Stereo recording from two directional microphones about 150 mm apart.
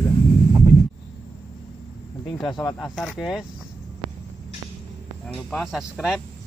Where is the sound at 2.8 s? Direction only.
5° left (ahead or behind).